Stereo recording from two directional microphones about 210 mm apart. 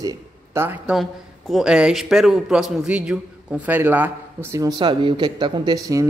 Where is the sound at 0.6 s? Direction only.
10° right (ahead or behind).